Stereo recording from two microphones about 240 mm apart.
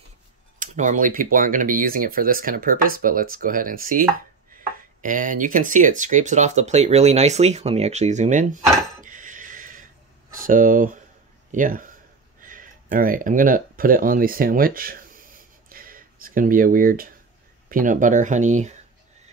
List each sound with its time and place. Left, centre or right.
0.6 s speech: right
5.0 s speech: right
9.0 s dishes: right
10.4 s speech: right
15.7 s a sound: right
17.6 s speech: right